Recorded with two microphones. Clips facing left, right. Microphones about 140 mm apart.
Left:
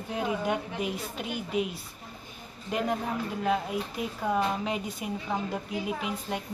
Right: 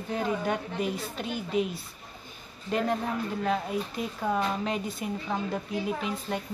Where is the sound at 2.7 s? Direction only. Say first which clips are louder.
Right 1 dB; 5° left (ahead or behind).